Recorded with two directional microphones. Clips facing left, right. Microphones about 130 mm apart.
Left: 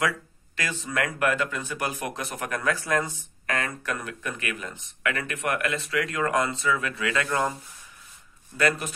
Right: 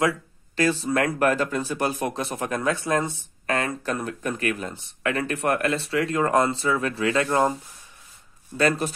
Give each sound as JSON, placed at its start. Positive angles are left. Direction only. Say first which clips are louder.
{"t": 0.6, "sound": "speech", "louder": "right 7 dB", "side_deg": -35}
{"t": 8.5, "sound": "speech", "louder": "right 3 dB", "side_deg": -30}